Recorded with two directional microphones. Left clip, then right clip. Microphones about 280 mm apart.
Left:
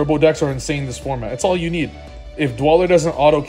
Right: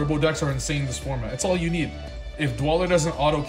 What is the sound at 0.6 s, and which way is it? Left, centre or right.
Speech, centre.